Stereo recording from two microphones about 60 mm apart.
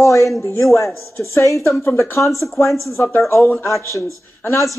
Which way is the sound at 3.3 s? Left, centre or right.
Left.